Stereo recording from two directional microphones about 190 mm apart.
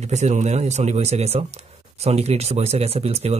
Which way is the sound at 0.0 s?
35° right (ahead or behind).